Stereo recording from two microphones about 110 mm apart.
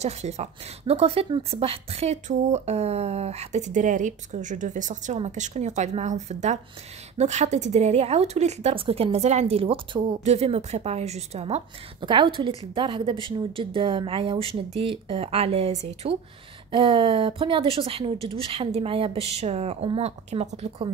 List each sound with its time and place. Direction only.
0.0 s speech: 80° right
5.0 s a woman's voice: 90° right
8.7 s a woman's voice: 60° right (ahead or behind)
10.2 s speech: 75° right (ahead or behind)
12.0 s a woman's voice: 45° right (ahead or behind); by 16.2 s 80° right
16.7 s a woman's voice: 55° right (ahead or behind)